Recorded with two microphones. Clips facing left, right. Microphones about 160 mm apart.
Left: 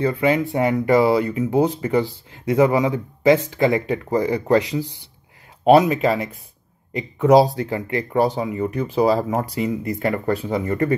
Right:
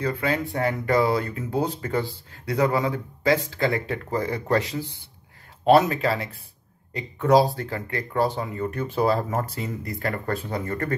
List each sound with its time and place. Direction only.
0.0 s speech: 20° left (ahead or behind)